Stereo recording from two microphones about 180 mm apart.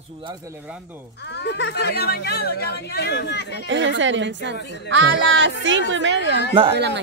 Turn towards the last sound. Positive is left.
turn(degrees=-30)  # may be behind; listen again after turning